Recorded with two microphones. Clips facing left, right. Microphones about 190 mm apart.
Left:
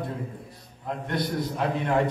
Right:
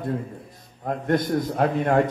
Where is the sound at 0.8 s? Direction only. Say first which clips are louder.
Right 6 dB; 45° right (ahead or behind).